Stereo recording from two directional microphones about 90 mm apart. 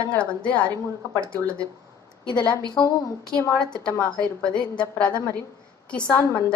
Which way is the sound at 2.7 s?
45° left (ahead or behind).